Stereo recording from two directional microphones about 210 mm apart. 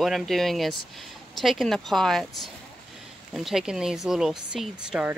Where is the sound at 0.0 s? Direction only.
Centre (ahead or behind).